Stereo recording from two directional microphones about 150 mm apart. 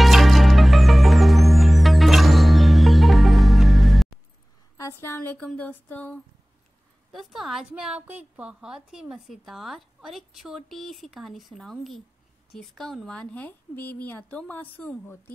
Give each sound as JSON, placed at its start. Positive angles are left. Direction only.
{"t": 0.0, "sound": "music", "side_deg": 0}
{"t": 4.7, "sound": "a sound", "side_deg": 20}
{"t": 5.5, "sound": "speech", "side_deg": 10}
{"t": 7.1, "sound": "a woman's voice", "side_deg": 0}